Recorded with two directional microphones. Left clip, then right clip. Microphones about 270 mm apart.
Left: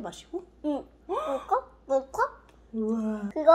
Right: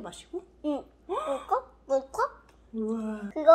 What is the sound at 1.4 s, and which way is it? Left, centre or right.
Speech, centre.